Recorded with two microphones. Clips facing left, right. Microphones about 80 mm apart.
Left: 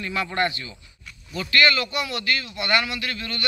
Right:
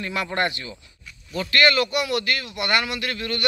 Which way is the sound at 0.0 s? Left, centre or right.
Right.